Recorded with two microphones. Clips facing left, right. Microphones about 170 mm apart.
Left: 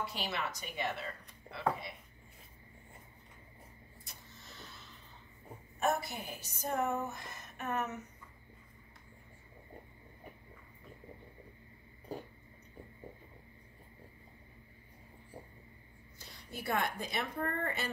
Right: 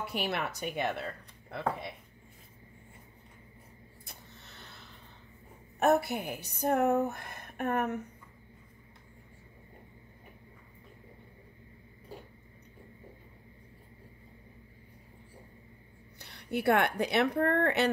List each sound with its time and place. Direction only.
0.0 s a woman's voice: 60° right (ahead or behind)
4.0 s a sound: 60° right (ahead or behind)
5.8 s a woman's voice: 65° right (ahead or behind)
16.2 s a woman's voice: 65° right (ahead or behind)